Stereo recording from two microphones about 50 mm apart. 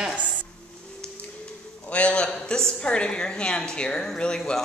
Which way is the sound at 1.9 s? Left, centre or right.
Left.